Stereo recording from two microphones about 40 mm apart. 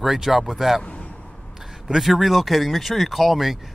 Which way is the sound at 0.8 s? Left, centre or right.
Left.